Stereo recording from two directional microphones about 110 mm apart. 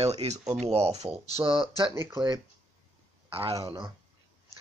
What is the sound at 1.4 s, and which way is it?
Speech, 50° right (ahead or behind).